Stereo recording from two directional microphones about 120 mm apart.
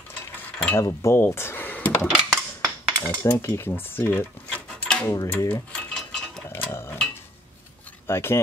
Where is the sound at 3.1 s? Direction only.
20° left (ahead or behind).